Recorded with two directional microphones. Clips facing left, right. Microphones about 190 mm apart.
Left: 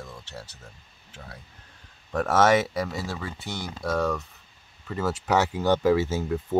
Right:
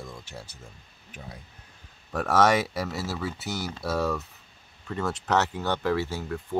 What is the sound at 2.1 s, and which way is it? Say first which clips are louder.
Speech: left 2 dB; centre (ahead or behind).